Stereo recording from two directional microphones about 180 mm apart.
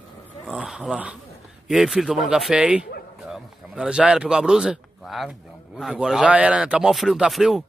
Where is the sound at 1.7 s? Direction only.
Centre (ahead or behind).